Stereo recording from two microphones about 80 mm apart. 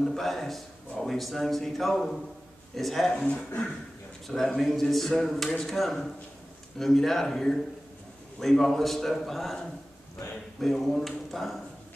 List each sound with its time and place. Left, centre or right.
0.0 s a man's voice: centre